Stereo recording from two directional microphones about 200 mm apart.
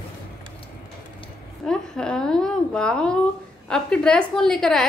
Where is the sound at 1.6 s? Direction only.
5° left (ahead or behind).